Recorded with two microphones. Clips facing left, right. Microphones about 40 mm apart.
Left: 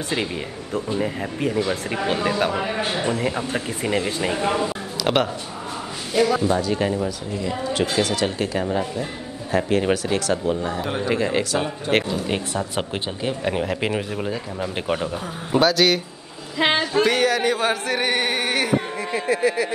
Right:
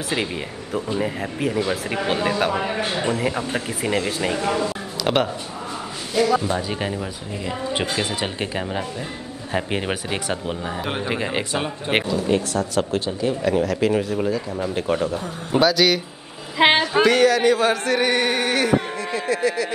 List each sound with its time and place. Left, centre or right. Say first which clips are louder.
0.7 s speech: even; centre
4.4 s music: even; centre
5.0 s speech: even; centre
6.6 s a woman's voice: left 4 dB; centre
12.1 s speech: right 4 dB; left
13.9 s music: right 4 dB; centre
15.5 s speech: even; centre
16.6 s speech: right 4 dB; right
17.1 s music: right 4 dB; centre